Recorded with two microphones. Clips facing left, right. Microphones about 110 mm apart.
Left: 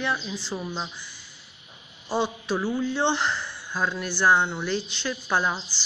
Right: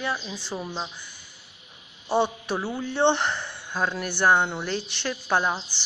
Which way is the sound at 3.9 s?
55° right (ahead or behind).